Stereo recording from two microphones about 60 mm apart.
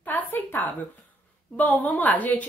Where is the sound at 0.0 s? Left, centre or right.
Left.